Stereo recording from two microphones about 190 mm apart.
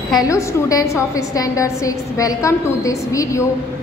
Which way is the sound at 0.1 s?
20° left (ahead or behind).